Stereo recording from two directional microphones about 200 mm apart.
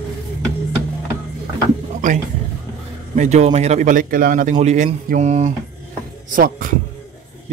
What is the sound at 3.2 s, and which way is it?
A man's voice, 35° right (ahead or behind).